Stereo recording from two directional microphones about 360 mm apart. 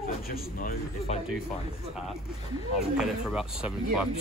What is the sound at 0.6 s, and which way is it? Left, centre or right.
Speech, left.